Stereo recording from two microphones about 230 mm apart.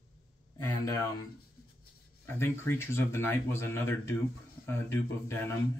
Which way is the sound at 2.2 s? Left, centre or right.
Centre.